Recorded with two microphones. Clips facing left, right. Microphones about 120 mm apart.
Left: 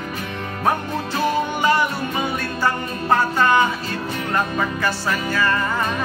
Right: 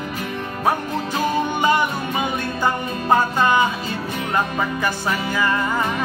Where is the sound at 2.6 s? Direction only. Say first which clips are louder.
Right 1 dB; 15° right (ahead or behind).